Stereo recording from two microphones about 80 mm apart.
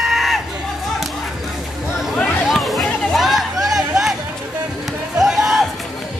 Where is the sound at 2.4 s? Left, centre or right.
Centre.